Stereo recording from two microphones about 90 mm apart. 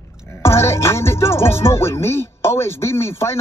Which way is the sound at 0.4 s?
30° left (ahead or behind).